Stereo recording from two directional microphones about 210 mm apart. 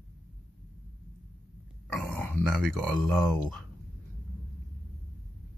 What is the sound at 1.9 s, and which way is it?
Speech, 5° left (ahead or behind).